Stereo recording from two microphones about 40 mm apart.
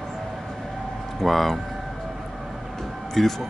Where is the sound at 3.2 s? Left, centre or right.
Centre.